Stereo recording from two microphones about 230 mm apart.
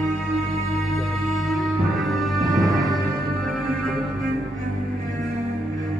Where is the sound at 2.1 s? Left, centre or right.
Centre.